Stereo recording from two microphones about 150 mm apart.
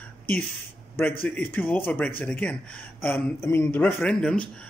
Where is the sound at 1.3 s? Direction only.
10° left (ahead or behind).